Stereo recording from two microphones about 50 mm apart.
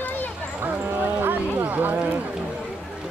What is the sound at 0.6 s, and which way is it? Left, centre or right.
Speech, right.